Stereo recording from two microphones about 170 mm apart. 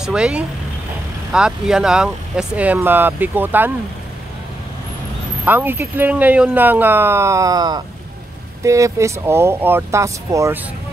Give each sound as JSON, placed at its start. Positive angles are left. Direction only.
{"t": 0.0, "sound": "speech", "side_deg": -5}
{"t": 5.4, "sound": "speech", "side_deg": -10}